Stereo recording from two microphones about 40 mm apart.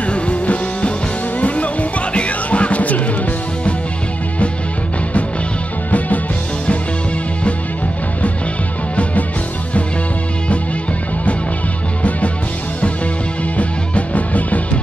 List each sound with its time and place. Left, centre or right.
0.0 s music: left
5.9 s music: left
13.6 s music: left